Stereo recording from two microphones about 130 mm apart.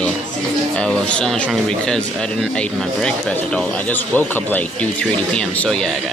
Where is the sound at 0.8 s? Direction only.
5° left (ahead or behind).